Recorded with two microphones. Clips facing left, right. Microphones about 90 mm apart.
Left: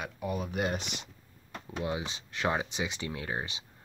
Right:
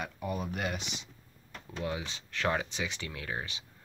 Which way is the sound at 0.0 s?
5° left (ahead or behind).